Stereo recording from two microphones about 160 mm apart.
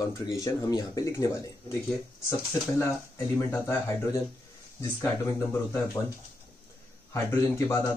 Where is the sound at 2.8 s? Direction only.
20° left (ahead or behind).